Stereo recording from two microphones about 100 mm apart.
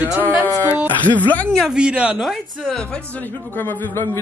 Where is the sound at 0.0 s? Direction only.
15° right (ahead or behind).